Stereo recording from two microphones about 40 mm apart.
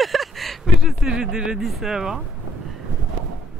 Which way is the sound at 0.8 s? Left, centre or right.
Centre.